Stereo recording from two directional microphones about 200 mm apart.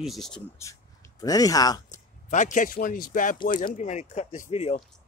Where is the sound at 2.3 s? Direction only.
40° left (ahead or behind).